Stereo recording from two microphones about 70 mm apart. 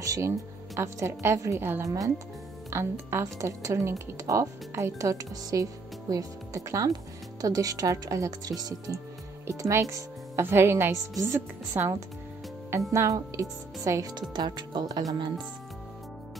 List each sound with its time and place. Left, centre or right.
0.0 s speech: right
2.7 s a woman's voice: right
3.3 s speech: right
9.5 s a woman's voice: right
14.3 s speech: right